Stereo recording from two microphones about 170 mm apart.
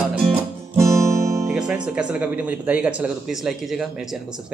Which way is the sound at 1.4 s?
5° right (ahead or behind).